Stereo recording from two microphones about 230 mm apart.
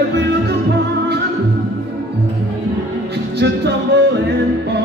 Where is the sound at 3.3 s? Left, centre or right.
Right.